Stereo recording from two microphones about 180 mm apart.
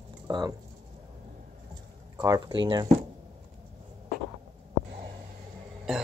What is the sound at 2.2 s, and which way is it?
Speech, 20° right (ahead or behind).